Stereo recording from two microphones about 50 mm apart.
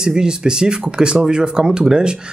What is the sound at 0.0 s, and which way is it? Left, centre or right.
Speech, centre.